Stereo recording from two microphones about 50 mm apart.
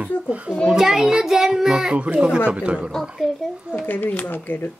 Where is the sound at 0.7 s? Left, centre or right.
Centre.